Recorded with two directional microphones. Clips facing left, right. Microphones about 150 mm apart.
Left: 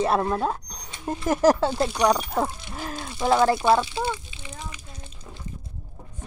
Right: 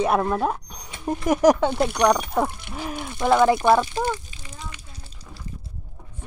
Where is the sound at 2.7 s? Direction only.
15° right (ahead or behind).